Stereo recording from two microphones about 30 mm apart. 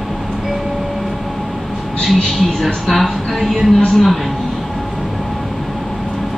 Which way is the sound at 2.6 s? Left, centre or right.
Centre.